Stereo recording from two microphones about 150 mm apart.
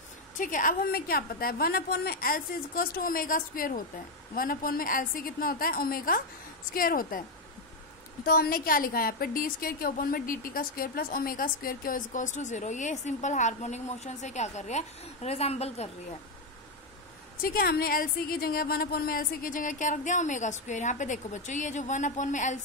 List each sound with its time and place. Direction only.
0.4 s a woman's voice: 60° left (ahead or behind)
8.3 s a woman's voice: 85° left; by 15.9 s 45° left (ahead or behind)
17.4 s a woman's voice: 85° left; by 22.6 s 55° left (ahead or behind)